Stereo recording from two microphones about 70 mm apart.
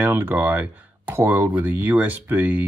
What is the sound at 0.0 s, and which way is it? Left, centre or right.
Speech, right.